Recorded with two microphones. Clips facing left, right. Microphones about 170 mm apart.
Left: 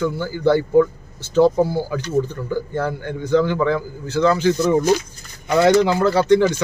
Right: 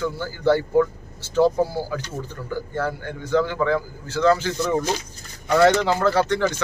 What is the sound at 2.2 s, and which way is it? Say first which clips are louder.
A man's voice: left 5 dB; 20° left (ahead or behind).